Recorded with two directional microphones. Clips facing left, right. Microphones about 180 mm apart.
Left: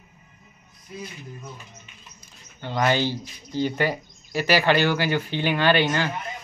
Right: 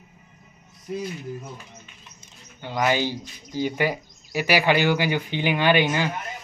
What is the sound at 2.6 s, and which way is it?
Speech, 10° right (ahead or behind).